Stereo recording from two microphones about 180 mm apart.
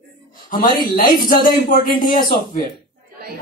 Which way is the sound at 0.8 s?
50° left (ahead or behind).